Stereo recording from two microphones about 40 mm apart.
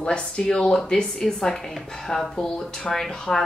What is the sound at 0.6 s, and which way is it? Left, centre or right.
A woman's voice, centre.